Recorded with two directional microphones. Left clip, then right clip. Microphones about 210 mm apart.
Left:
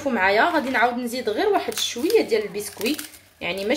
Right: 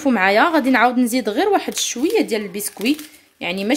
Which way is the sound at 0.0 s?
50° right (ahead or behind).